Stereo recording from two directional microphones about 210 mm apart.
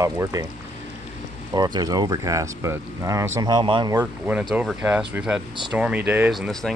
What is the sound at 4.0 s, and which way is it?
Speech, 5° right (ahead or behind).